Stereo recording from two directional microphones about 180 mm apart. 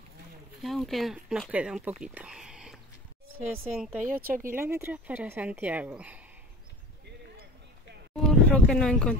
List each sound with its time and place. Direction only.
0.6 s speech: centre (ahead or behind)
2.0 s a sound: 5° right (ahead or behind)
3.7 s speech: 5° right (ahead or behind)
4.0 s a woman's voice: 50° right (ahead or behind)
4.6 s speech: 15° right (ahead or behind)
8.2 s speech: 5° left (ahead or behind)